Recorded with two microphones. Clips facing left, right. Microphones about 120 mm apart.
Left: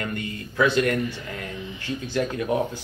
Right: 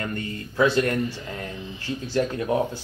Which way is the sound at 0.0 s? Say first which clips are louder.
Even; 30° right (ahead or behind).